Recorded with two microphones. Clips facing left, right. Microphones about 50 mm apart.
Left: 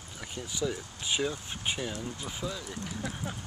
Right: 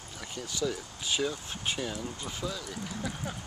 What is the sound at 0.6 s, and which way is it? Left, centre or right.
Speech, centre.